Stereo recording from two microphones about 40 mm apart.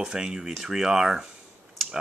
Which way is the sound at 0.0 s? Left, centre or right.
Centre.